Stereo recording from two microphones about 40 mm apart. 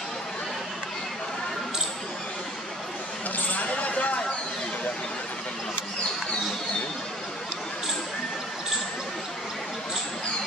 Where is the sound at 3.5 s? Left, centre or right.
Left.